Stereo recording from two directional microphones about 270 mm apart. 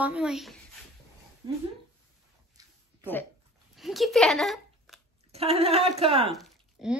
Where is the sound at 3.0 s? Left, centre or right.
Centre.